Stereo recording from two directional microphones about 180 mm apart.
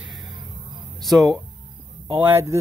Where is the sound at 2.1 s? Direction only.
10° right (ahead or behind).